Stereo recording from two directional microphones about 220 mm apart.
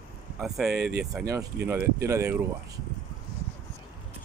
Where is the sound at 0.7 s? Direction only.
50° right (ahead or behind).